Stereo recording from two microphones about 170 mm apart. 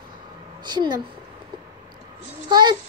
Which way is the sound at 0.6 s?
25° right (ahead or behind).